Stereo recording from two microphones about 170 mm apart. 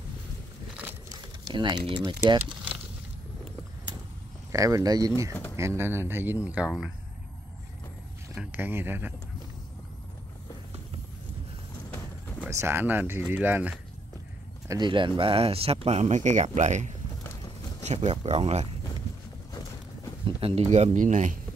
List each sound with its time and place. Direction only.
1.0 s crumpling: 25° right (ahead or behind)
4.5 s speech: 20° right (ahead or behind)
8.4 s speech: 10° right (ahead or behind)
12.4 s speech: 15° right (ahead or behind)
14.7 s speech: 25° right (ahead or behind)
20.2 s speech: 35° right (ahead or behind)